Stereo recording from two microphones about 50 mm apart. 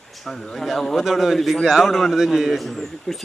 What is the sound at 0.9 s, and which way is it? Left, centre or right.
Speech, centre.